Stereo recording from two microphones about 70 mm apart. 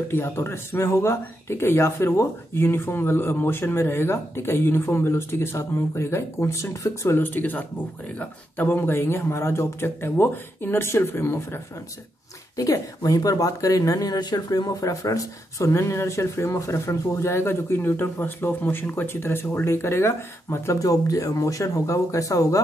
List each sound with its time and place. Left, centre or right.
0.1 s speech: left
7.2 s speech: left
12.5 s speech: left
20.8 s speech: left